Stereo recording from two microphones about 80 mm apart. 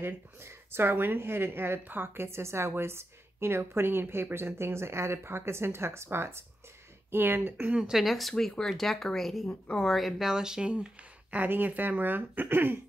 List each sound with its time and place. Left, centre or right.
0.0 s speech: right
7.7 s speech: centre
9.5 s a woman's voice: centre
9.8 s speech: centre; by 12.7 s right